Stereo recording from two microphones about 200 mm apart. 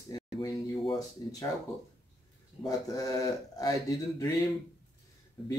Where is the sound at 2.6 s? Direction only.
15° left (ahead or behind).